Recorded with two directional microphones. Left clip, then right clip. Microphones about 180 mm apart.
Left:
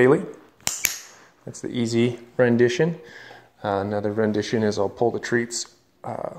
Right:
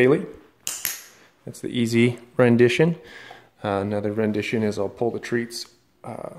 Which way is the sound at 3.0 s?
25° right (ahead or behind).